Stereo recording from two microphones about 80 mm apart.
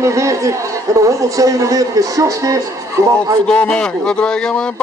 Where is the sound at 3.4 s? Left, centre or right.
Centre.